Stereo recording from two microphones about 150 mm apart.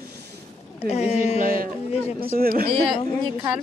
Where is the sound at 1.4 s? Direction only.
75° right (ahead or behind).